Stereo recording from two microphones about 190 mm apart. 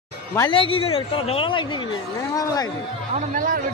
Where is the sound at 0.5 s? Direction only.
30° left (ahead or behind).